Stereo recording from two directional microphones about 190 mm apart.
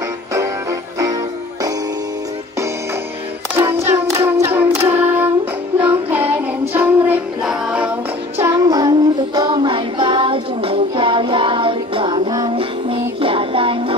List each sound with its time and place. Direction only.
0.3 s music: 15° right (ahead or behind)
3.9 s child singing: 10° right (ahead or behind)
5.8 s music: 10° right (ahead or behind); by 13.9 s 30° right (ahead or behind)